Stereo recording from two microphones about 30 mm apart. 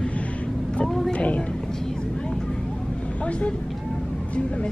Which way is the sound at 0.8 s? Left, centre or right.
Centre.